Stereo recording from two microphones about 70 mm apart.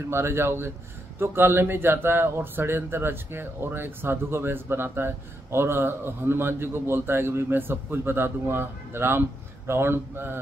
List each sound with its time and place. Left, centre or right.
0.1 s speech: right